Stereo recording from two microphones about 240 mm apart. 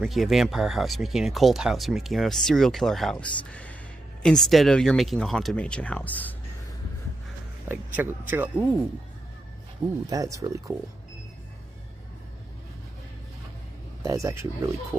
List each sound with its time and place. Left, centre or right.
0.0 s speech: centre
7.6 s speech: centre
10.0 s speech: centre
14.0 s speech: centre